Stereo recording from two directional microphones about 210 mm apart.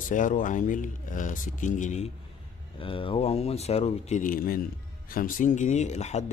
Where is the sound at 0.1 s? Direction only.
35° left (ahead or behind).